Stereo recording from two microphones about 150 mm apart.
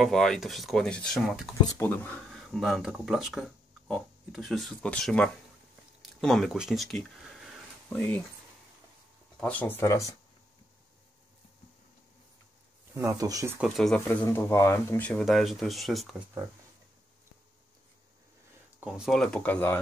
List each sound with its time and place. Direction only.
0.0 s speech: centre (ahead or behind)
1.9 s speech: 10° left (ahead or behind)
2.3 s speech: centre (ahead or behind)
9.4 s speech: 10° left (ahead or behind)
12.9 s speech: 20° right (ahead or behind)
13.6 s speech: centre (ahead or behind)
14.0 s speech: 15° left (ahead or behind); by 16.3 s centre (ahead or behind)
18.8 s speech: 5° right (ahead or behind)
19.1 s speech: 5° left (ahead or behind)